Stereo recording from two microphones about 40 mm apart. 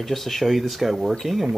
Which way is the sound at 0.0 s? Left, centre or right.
Centre.